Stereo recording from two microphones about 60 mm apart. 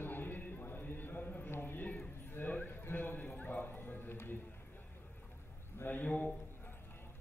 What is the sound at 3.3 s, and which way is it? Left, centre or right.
Horse, left.